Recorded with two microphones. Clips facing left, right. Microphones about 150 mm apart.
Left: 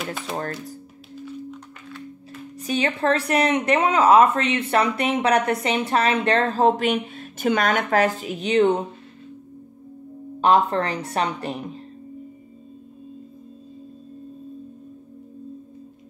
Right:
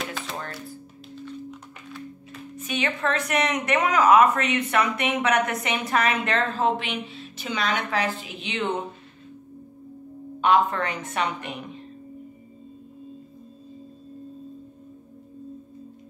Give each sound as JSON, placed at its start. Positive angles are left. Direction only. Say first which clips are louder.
{"t": 1.2, "sound": "music", "louder": "left 3 dB", "side_deg": 0}
{"t": 2.5, "sound": "a woman's voice", "louder": "left 4 dB", "side_deg": 35}
{"t": 10.4, "sound": "a woman's voice", "louder": "left 2 dB", "side_deg": 35}